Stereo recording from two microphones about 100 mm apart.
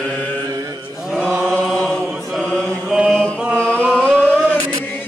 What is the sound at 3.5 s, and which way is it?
Carnatic music, 15° left (ahead or behind).